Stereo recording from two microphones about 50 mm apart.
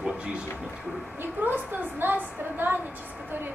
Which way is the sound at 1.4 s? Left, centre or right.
Right.